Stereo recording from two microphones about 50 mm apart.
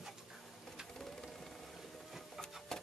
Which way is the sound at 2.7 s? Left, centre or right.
Centre.